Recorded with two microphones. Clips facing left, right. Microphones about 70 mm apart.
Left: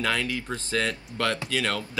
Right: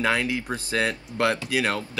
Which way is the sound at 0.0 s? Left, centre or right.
Right.